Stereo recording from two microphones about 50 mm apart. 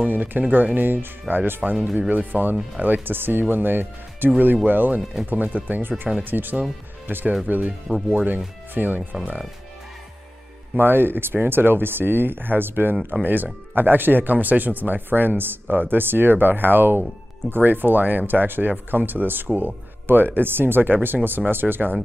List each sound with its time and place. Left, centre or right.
0.0 s speech: right
10.8 s speech: right